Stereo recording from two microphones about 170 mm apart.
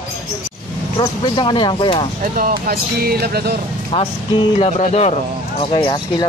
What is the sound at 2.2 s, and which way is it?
Speech, 55° right (ahead or behind).